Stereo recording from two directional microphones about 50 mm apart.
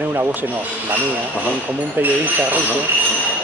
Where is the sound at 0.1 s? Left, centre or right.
Right.